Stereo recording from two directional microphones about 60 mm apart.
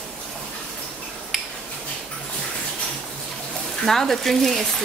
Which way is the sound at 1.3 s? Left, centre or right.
Centre.